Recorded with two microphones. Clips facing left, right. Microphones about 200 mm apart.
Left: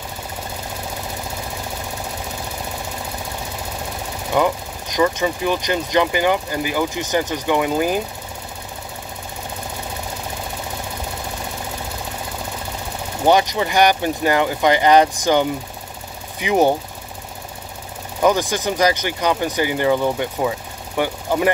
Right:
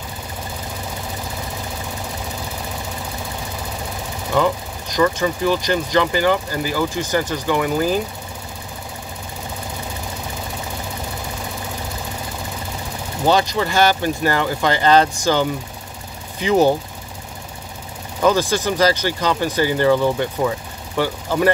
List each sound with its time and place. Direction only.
4.4 s speech: 15° left (ahead or behind)
13.3 s speech: 15° left (ahead or behind)
18.2 s speech: 15° left (ahead or behind)